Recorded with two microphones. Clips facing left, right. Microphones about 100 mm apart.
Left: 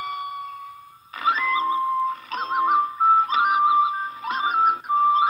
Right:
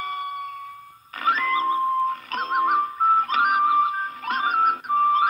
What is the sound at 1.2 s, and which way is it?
Music, 20° left (ahead or behind).